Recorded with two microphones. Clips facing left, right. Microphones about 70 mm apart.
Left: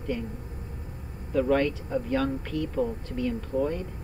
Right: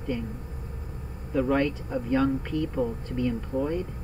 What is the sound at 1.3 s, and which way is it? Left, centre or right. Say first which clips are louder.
Speech: left 1 dB; centre.